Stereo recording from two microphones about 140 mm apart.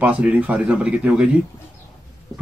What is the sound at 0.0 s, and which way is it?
Speech, 10° right (ahead or behind).